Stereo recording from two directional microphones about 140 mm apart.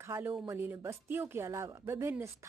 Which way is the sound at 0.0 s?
20° right (ahead or behind).